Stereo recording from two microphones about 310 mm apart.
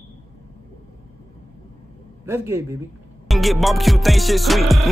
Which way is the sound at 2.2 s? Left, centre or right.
Centre.